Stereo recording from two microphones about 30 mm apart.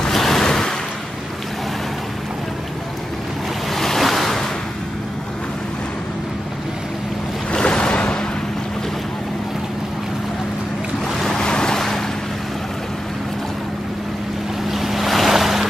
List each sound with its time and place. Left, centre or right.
0.1 s a sound: centre
0.5 s a sound: centre
3.7 s waves: centre
7.6 s waves: left
11.4 s boat: left
14.7 s waves: centre